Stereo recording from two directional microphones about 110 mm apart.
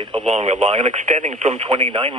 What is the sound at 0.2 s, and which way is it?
Speech, 90° right.